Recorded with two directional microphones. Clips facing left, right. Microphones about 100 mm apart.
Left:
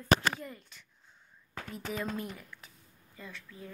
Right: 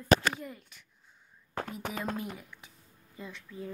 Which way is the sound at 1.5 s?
45° right (ahead or behind).